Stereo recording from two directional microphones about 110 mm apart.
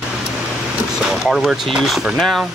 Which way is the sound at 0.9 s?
Centre (ahead or behind).